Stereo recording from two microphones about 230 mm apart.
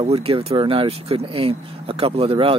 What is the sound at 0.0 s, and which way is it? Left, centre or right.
Speech, right.